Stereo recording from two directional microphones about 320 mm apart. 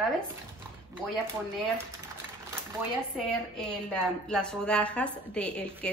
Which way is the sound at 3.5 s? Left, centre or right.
Centre.